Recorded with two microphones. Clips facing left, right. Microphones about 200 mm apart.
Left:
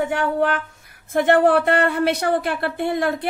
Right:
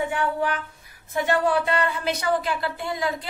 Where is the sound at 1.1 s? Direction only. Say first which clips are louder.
Left 7 dB; 55° left (ahead or behind).